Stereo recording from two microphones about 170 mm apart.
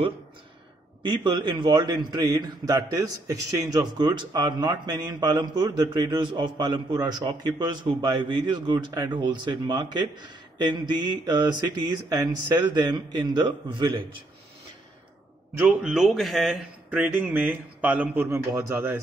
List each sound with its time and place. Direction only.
1.0 s a man's voice: 25° right (ahead or behind)
15.5 s a man's voice: 5° right (ahead or behind)